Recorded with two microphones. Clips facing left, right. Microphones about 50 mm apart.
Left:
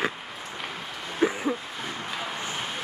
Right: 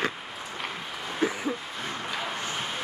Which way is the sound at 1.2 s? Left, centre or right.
Centre.